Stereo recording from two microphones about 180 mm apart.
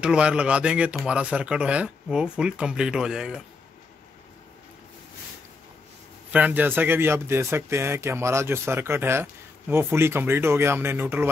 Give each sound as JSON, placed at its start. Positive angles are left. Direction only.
{"t": 0.0, "sound": "speech", "side_deg": -5}
{"t": 6.3, "sound": "speech", "side_deg": -10}